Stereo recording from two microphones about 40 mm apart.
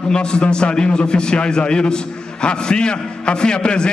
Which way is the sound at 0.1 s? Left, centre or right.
Left.